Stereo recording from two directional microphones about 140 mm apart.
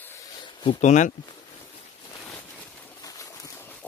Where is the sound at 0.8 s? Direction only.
60° left (ahead or behind).